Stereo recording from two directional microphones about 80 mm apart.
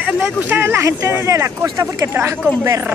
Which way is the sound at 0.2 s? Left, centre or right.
Right.